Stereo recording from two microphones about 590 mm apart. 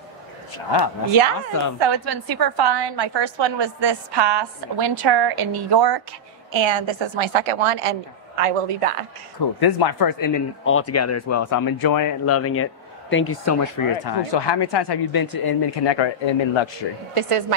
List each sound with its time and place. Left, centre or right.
0.7 s speech: left
1.8 s a woman's voice: right
9.6 s speech: left
10.6 s speech: left
14.0 s a man's voice: left
17.1 s a woman's voice: right